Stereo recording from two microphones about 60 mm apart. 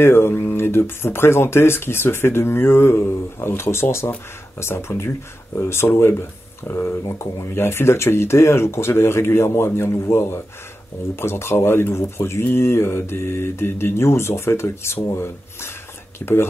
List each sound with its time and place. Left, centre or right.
0.0 s speech: left